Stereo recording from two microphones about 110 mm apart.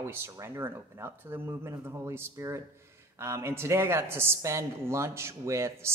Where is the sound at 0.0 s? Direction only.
25° right (ahead or behind).